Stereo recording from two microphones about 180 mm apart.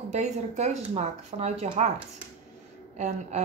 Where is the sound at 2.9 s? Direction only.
40° right (ahead or behind).